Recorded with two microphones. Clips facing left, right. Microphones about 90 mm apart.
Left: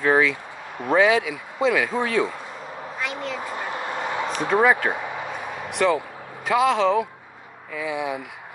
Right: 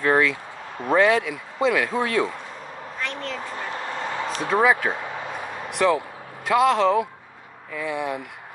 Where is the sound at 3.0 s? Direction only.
10° left (ahead or behind).